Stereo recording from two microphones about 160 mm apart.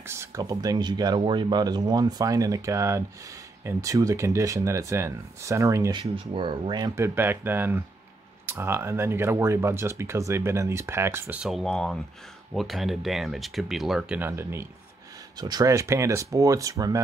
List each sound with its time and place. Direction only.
0.0 s speech: 15° right (ahead or behind)
5.9 s speech: 30° right (ahead or behind)
7.0 s speech: 15° right (ahead or behind)
15.3 s speech: 25° right (ahead or behind)